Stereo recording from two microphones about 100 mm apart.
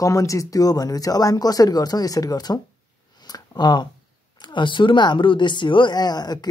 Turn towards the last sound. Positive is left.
turn(degrees=45)  # may be behind; listen again after turning